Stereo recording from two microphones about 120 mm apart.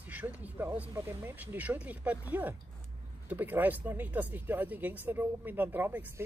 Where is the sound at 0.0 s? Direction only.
15° right (ahead or behind).